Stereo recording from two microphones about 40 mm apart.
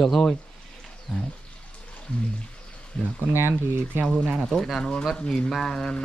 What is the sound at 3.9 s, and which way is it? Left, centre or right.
Speech, right.